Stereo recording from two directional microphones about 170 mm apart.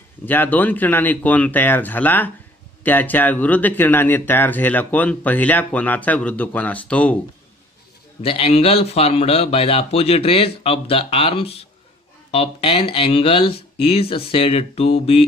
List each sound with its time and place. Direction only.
0.2 s speech: 10° left (ahead or behind)
8.2 s speech: 35° left (ahead or behind)